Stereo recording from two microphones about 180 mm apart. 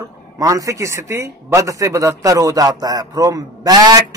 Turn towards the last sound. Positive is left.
turn(degrees=-20)  # may be behind; listen again after turning